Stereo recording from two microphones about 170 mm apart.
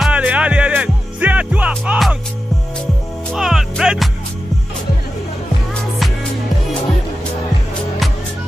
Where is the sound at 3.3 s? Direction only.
5° right (ahead or behind).